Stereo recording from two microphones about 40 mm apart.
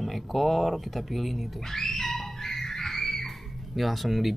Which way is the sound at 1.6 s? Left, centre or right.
Centre.